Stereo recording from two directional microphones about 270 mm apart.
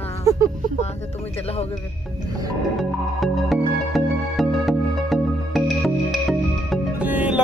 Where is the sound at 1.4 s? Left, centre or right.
Left.